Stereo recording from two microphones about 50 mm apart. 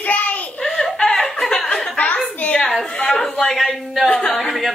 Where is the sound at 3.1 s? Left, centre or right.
Centre.